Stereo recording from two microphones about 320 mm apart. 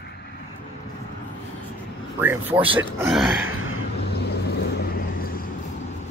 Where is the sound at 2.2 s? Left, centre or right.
Centre.